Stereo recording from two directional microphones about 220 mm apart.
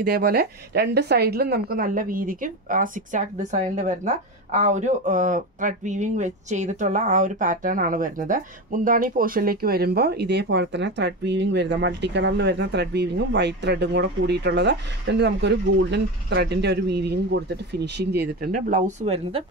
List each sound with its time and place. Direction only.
0.0 s speech: 45° right (ahead or behind); by 19.4 s 25° right (ahead or behind)